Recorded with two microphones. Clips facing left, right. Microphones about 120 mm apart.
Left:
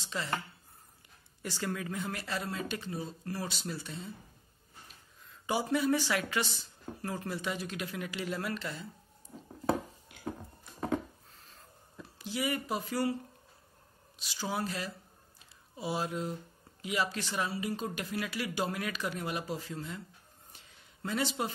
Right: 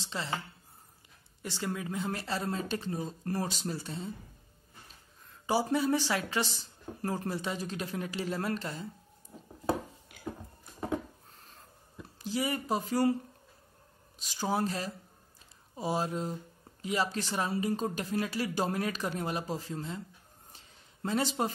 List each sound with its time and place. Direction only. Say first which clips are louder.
0.0 s speech: even; 25° right (ahead or behind)
1.4 s speech: even; 20° right (ahead or behind)
5.5 s speech: right 1 dB; 30° right (ahead or behind)
12.2 s speech: right 2 dB; 35° right (ahead or behind)
14.1 s speech: right 4 dB; 45° right (ahead or behind)
20.5 s a sound: right 1 dB; 35° right (ahead or behind)